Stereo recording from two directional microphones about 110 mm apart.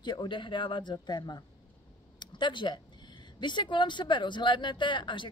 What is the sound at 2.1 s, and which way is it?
Speech, 45° left (ahead or behind).